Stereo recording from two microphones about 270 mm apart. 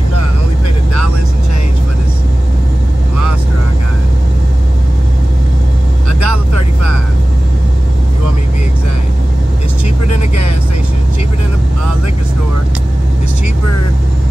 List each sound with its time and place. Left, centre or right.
6.2 s vehicle: left
10.0 s vehicle: left